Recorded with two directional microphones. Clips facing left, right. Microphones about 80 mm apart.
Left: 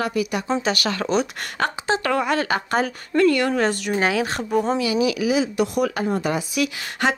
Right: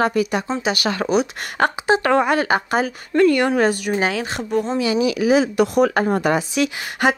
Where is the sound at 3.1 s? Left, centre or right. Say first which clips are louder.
Right 3 dB; right.